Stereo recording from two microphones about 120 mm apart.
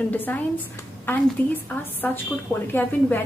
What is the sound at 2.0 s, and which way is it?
Speech, 20° left (ahead or behind).